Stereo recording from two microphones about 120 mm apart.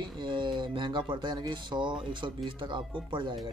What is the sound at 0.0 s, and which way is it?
Speech, 40° right (ahead or behind).